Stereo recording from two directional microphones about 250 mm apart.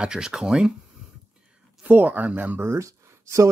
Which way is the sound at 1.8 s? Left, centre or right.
Centre.